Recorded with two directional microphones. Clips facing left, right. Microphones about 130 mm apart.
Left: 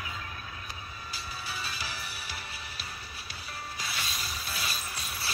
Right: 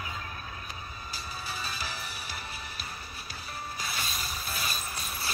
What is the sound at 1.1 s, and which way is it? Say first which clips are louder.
Music: right 1 dB; 45° right (ahead or behind).